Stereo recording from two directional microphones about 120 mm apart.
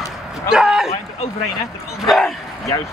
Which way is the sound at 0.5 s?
5° right (ahead or behind).